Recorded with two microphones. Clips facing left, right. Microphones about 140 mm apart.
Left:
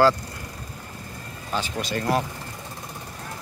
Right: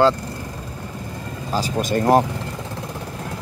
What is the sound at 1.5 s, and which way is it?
Speech, 40° right (ahead or behind).